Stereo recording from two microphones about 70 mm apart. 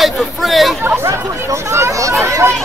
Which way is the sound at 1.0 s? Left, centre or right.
Right.